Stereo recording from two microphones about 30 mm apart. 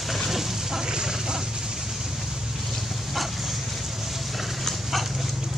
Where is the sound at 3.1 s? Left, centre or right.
Centre.